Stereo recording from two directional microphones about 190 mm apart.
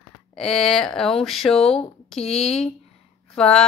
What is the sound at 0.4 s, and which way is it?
A woman's voice, 5° left (ahead or behind).